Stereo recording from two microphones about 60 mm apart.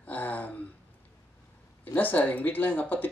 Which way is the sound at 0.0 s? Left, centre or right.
Left.